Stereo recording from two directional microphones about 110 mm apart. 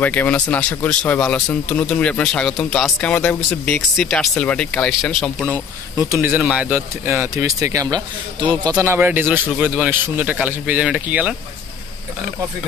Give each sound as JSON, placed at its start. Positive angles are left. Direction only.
{"t": 0.0, "sound": "speech", "side_deg": 15}
{"t": 3.0, "sound": "speech", "side_deg": 15}
{"t": 6.0, "sound": "speech", "side_deg": -25}
{"t": 6.3, "sound": "speech", "side_deg": -10}
{"t": 8.8, "sound": "a man's voice", "side_deg": -20}